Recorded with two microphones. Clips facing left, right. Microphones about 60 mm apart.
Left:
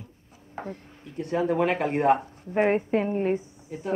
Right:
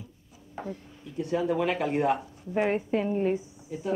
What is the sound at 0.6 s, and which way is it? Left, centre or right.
Speech, left.